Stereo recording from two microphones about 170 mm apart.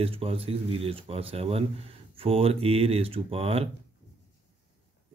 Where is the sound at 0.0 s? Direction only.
35° right (ahead or behind).